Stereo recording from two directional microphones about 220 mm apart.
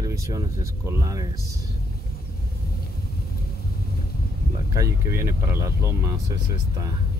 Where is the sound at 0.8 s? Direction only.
15° right (ahead or behind).